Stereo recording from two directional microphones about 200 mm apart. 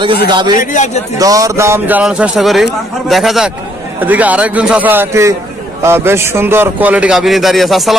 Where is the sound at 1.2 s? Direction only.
15° right (ahead or behind).